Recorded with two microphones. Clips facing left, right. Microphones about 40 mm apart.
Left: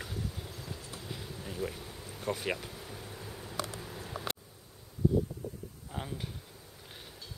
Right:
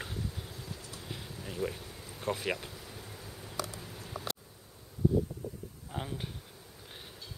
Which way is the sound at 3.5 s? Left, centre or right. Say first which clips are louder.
Left 1 dB; left.